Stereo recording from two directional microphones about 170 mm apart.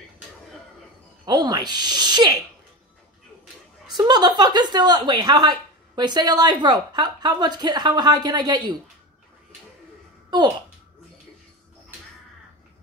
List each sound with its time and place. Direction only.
1.2 s a woman's voice: 25° right (ahead or behind)
3.9 s a woman's voice: 25° right (ahead or behind)